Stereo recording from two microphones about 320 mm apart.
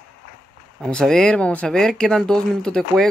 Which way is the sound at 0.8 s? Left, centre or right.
Centre.